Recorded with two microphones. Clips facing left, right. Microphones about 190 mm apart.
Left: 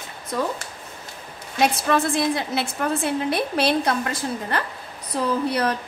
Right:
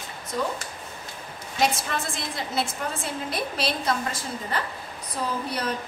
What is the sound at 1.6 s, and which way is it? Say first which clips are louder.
A woman's voice: left 6 dB; 60° left (ahead or behind).